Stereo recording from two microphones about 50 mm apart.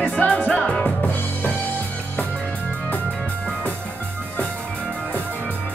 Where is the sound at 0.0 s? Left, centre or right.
Left.